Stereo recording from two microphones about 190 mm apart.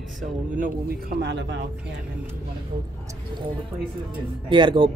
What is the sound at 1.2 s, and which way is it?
Speech, 65° right (ahead or behind).